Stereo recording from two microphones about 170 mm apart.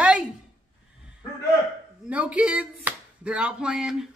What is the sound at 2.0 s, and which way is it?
Speech, 5° right (ahead or behind).